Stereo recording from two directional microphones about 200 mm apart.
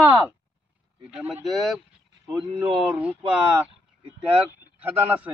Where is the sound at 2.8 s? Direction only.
10° right (ahead or behind).